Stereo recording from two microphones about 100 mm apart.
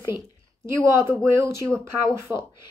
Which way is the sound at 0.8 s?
30° right (ahead or behind).